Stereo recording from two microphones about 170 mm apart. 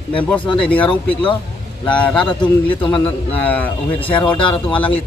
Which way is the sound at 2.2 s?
30° left (ahead or behind).